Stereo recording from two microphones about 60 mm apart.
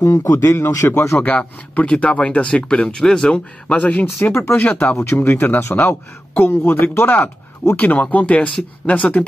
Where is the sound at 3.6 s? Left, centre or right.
Left.